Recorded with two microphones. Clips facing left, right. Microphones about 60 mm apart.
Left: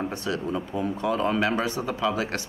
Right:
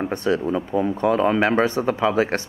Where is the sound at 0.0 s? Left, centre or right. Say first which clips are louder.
Right 7 dB; right.